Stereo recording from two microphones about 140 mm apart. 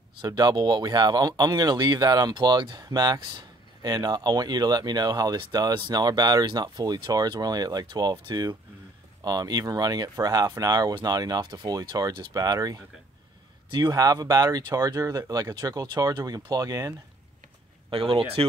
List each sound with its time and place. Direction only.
0.2 s speech: 30° right (ahead or behind)
17.9 s speech: 40° right (ahead or behind)